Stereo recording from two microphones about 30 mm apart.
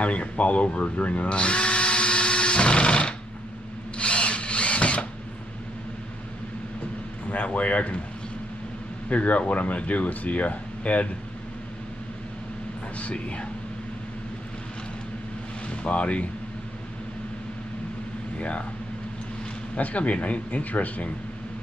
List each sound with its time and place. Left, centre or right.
0.0 s speech: left
1.3 s drill: left
7.4 s a sound: left
9.1 s speech: left
12.9 s speech: left
15.6 s speech: left
19.7 s speech: left